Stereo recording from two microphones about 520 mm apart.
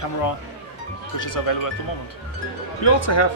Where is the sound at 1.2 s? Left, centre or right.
Left.